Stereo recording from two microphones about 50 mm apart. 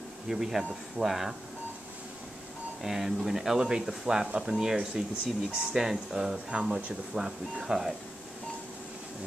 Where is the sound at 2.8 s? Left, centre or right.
Centre.